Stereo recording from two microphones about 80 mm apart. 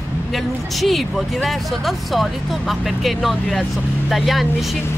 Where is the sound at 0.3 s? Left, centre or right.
Centre.